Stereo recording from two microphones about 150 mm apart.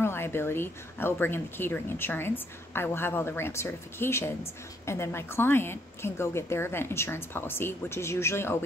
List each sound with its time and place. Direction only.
0.0 s speech: 15° left (ahead or behind)